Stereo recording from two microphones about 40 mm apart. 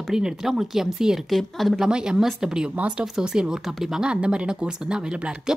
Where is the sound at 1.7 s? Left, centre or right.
Centre.